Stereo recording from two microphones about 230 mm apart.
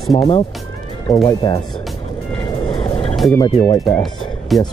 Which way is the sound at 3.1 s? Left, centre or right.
Centre.